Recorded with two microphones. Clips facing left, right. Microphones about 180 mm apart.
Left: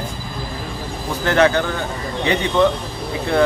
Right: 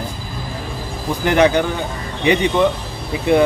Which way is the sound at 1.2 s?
15° right (ahead or behind).